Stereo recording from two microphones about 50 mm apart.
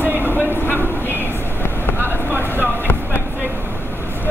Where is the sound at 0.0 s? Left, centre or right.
Right.